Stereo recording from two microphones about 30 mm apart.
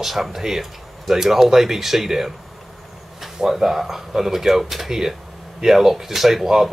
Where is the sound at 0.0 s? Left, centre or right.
Centre.